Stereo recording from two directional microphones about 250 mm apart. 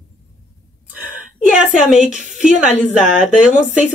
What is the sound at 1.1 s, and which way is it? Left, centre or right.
A woman's voice, centre.